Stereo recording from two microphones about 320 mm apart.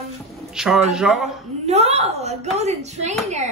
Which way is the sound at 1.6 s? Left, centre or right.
Centre.